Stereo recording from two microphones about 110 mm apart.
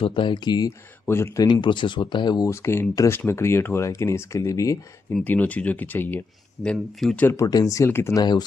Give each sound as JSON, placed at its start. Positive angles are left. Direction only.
{"t": 0.0, "sound": "speech", "side_deg": 50}
{"t": 1.0, "sound": "speech", "side_deg": 25}
{"t": 1.5, "sound": "speech", "side_deg": 45}
{"t": 2.5, "sound": "speech", "side_deg": 25}
{"t": 5.2, "sound": "speech", "side_deg": 15}
{"t": 6.6, "sound": "speech", "side_deg": 5}
{"t": 7.2, "sound": "speech", "side_deg": 30}
{"t": 8.2, "sound": "speech", "side_deg": 40}